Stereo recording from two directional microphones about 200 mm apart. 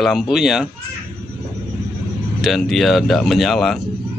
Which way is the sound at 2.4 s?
Centre (ahead or behind).